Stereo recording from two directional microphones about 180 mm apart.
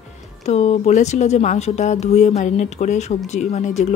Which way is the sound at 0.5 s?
35° left (ahead or behind).